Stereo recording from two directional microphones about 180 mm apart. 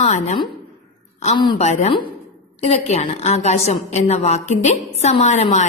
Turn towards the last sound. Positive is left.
turn(degrees=40)  # may be behind; listen again after turning